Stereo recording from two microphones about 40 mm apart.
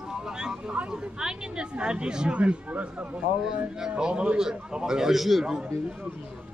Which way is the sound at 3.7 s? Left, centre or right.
Centre.